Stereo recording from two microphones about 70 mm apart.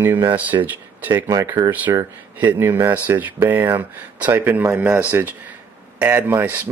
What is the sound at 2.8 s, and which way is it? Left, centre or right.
Speech, right.